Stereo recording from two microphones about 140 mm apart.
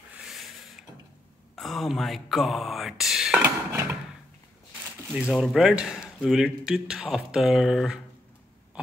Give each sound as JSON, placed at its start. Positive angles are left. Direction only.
{"t": 0.1, "sound": "a sound", "side_deg": 0}
{"t": 1.5, "sound": "speech", "side_deg": 0}
{"t": 3.4, "sound": "music", "side_deg": -15}
{"t": 5.1, "sound": "speech", "side_deg": -5}